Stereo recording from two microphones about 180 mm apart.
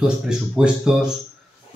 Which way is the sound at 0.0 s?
5° right (ahead or behind).